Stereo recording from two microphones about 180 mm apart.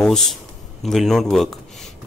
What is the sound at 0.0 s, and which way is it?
Speech, 5° left (ahead or behind).